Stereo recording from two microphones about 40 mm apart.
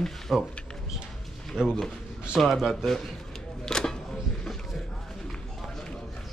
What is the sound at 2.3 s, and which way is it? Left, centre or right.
Speech, centre.